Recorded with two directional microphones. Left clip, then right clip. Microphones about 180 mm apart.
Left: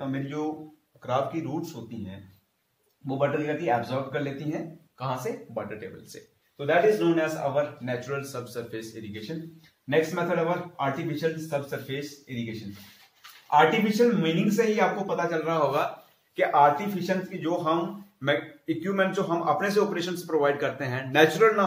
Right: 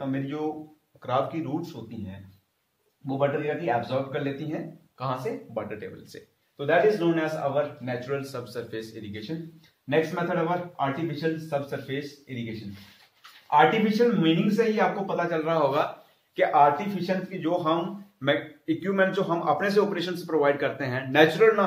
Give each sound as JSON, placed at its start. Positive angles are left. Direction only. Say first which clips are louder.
{"t": 0.0, "sound": "a man's voice", "louder": "right 1 dB", "side_deg": -15}
{"t": 13.5, "sound": "a man's voice", "louder": "right 1 dB", "side_deg": -10}